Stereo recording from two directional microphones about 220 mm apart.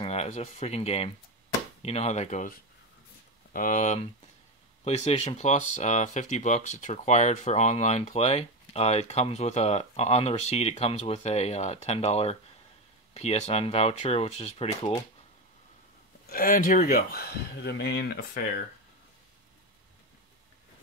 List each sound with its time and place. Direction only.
0.0 s speech: 30° left (ahead or behind)
3.5 s speech: 35° left (ahead or behind)
16.3 s speech: 40° left (ahead or behind)